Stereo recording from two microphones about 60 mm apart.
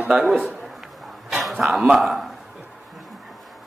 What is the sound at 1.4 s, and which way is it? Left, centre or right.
Speech, centre.